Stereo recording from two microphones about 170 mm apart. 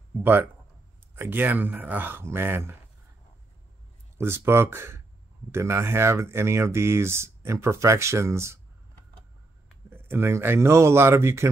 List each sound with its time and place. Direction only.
0.2 s speech: 10° right (ahead or behind)
4.2 s speech: 15° right (ahead or behind)
9.8 s speech: 15° right (ahead or behind)